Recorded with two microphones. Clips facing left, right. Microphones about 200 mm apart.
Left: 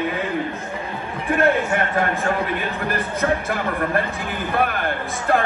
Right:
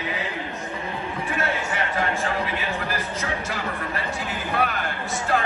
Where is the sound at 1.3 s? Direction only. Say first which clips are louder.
Left 9 dB; 55° left (ahead or behind).